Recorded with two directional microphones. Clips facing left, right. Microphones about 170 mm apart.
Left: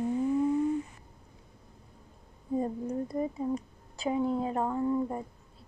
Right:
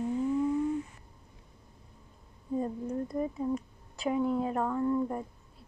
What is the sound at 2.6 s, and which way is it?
Speech, 15° left (ahead or behind).